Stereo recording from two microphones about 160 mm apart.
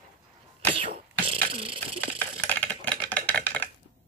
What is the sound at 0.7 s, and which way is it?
Cough, 35° right (ahead or behind).